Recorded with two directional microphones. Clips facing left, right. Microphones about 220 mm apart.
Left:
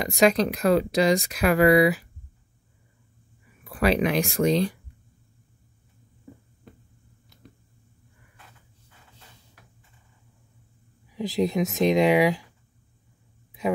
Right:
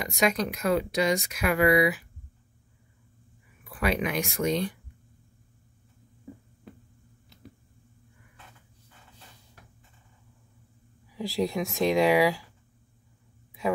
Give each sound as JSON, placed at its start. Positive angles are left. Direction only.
{"t": 0.0, "sound": "speech", "side_deg": 35}
{"t": 3.6, "sound": "speech", "side_deg": 35}
{"t": 11.1, "sound": "speech", "side_deg": 20}